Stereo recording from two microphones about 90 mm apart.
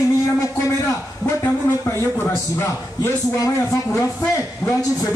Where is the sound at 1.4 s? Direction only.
25° left (ahead or behind).